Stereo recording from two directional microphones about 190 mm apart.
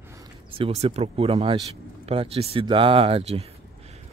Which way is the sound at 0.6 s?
30° right (ahead or behind).